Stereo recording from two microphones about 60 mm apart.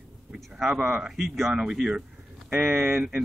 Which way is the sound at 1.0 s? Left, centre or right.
Centre.